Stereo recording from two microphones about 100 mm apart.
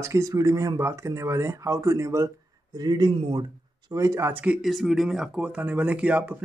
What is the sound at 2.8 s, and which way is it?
Speech, 45° right (ahead or behind).